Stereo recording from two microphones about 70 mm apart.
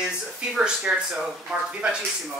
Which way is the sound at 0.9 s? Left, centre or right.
Right.